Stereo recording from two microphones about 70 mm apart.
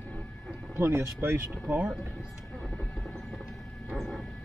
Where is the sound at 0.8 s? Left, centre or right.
Right.